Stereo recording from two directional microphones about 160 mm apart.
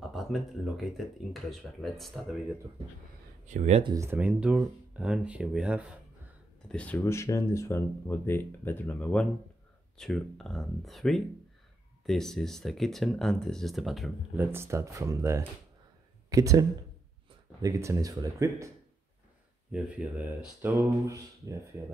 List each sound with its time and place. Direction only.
0.1 s speech: centre (ahead or behind)
3.4 s speech: 45° right (ahead or behind)
3.8 s speech: 20° right (ahead or behind)
6.7 s speech: 10° left (ahead or behind)
7.0 s speech: 20° left (ahead or behind); by 14.1 s centre (ahead or behind)
14.3 s speech: 15° right (ahead or behind)
19.7 s speech: 5° right (ahead or behind)